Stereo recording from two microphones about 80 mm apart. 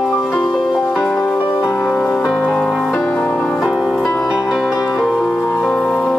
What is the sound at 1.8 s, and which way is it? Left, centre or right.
Music, centre.